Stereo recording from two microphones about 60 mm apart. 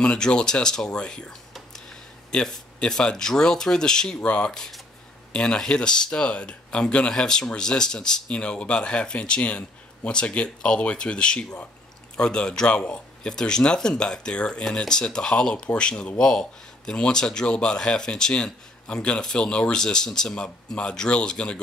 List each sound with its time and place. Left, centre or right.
0.0 s speech: centre
4.5 s speech: centre